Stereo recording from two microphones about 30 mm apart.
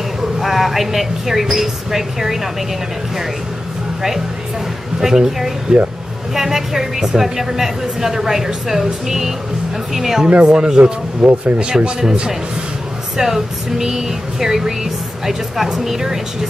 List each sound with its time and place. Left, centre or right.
0.4 s a woman's voice: centre
5.0 s a woman's voice: centre
5.7 s speech: right
6.3 s a woman's voice: centre
10.4 s speech: right
11.2 s a woman's voice: centre
13.2 s a woman's voice: centre